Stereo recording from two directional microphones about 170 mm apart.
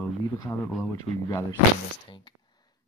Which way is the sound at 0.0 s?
10° left (ahead or behind).